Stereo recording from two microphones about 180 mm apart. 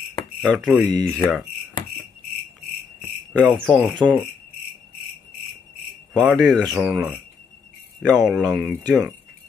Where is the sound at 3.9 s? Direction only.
25° right (ahead or behind).